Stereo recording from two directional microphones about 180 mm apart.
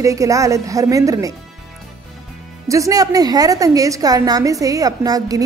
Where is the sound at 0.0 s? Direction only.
15° right (ahead or behind).